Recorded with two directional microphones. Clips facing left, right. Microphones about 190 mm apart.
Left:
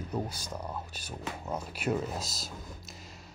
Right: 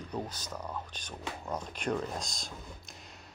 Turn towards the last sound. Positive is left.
turn(degrees=0)  # may be behind; listen again after turning